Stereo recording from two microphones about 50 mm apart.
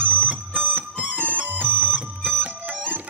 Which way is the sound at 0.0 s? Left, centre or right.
Right.